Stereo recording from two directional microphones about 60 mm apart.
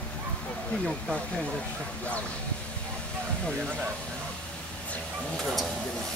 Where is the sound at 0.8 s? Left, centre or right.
Centre.